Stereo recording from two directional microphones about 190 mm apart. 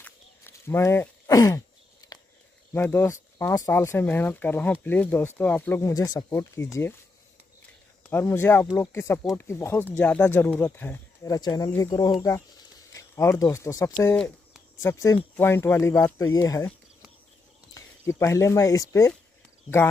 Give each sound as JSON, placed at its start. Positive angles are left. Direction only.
{"t": 0.0, "sound": "a sound", "side_deg": 10}
{"t": 2.7, "sound": "speech", "side_deg": 10}
{"t": 8.1, "sound": "speech", "side_deg": 10}
{"t": 14.1, "sound": "a sound", "side_deg": 5}
{"t": 14.8, "sound": "speech", "side_deg": 15}
{"t": 17.7, "sound": "speech", "side_deg": 15}